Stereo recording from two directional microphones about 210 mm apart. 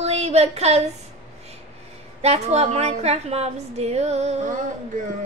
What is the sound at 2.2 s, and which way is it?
Speech, 30° right (ahead or behind).